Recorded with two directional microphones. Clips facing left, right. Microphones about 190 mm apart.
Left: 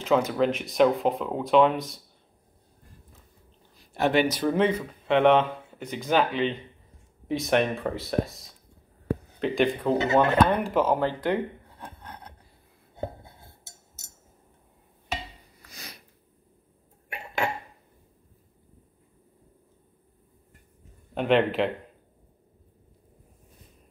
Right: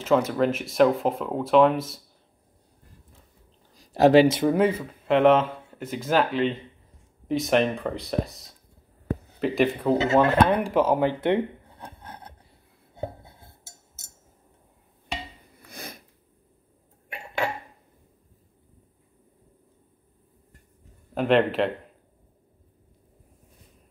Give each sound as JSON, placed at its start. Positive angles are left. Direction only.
{"t": 0.0, "sound": "speech", "side_deg": 0}
{"t": 3.9, "sound": "speech", "side_deg": -35}
{"t": 4.5, "sound": "speech", "side_deg": -10}
{"t": 15.5, "sound": "a sound", "side_deg": -55}
{"t": 21.1, "sound": "a man's voice", "side_deg": 0}